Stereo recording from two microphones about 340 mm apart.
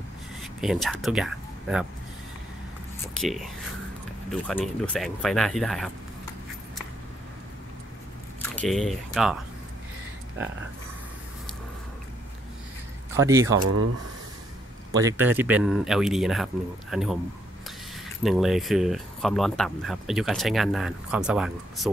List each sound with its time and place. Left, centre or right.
0.4 s speech: centre
3.2 s speech: centre
8.4 s speech: centre
13.1 s speech: centre
13.6 s speech: right
15.0 s speech: centre
18.2 s speech: centre